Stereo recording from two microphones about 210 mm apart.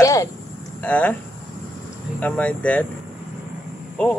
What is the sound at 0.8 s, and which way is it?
Speech, 5° left (ahead or behind).